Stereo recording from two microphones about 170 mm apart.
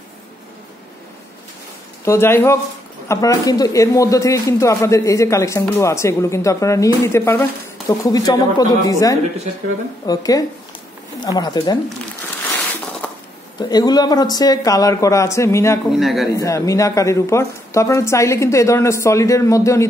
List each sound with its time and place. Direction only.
2.0 s speech: 15° left (ahead or behind)
13.6 s speech: 25° left (ahead or behind)
15.9 s a man's voice: centre (ahead or behind)
16.3 s speech: 20° left (ahead or behind)